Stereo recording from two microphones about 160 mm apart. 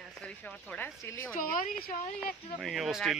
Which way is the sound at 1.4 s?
55° left (ahead or behind).